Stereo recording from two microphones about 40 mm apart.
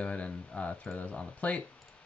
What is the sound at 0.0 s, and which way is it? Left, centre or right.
Speech, left.